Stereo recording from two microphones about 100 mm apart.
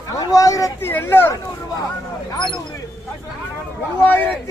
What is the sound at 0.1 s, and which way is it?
Speech, 35° left (ahead or behind).